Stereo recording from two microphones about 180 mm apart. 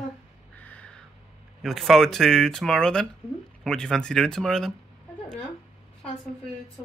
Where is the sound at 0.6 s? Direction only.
10° left (ahead or behind).